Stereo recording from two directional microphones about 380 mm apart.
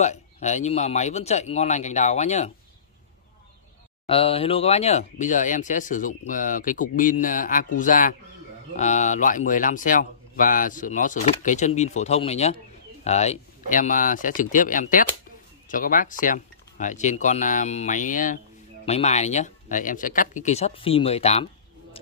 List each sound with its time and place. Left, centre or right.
0.0 s speech: centre
4.1 s speech: centre